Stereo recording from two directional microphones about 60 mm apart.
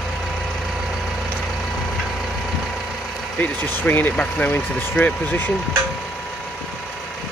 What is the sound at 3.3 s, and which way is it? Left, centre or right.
Speech, left.